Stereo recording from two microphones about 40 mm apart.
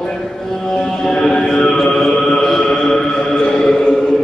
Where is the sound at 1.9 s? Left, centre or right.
Centre.